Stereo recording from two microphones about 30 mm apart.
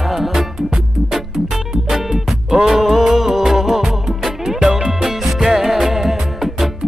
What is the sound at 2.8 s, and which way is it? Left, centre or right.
Music, centre.